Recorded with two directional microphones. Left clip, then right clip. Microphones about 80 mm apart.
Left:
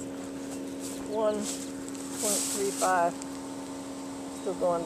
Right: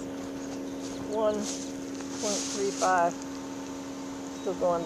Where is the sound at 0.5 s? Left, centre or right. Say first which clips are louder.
Right 1 dB; centre.